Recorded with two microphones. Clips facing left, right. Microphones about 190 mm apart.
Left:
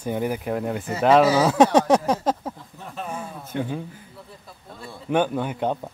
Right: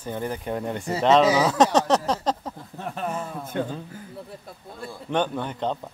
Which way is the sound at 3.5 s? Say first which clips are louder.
Even; 50° right (ahead or behind).